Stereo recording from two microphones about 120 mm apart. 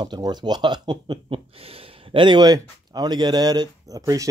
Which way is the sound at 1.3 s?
50° right (ahead or behind).